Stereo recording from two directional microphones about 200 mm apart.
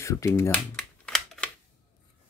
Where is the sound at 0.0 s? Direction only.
15° left (ahead or behind).